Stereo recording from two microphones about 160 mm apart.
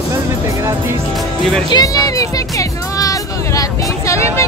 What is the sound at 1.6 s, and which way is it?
Music, 25° left (ahead or behind).